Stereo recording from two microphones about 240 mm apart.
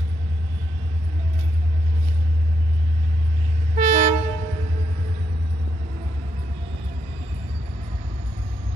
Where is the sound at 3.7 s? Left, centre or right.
Right.